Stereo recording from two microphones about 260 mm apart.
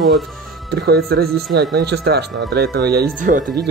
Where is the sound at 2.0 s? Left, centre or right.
Right.